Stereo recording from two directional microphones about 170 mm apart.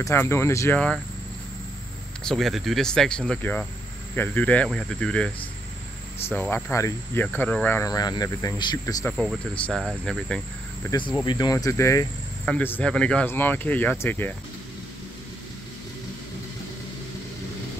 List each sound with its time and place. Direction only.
0.0 s speech: 15° left (ahead or behind)
0.7 s speech: 5° left (ahead or behind)
2.2 s speech: centre (ahead or behind)
6.5 s speech: 15° left (ahead or behind)
9.1 s speech: centre (ahead or behind)
11.2 s speech: 25° left (ahead or behind)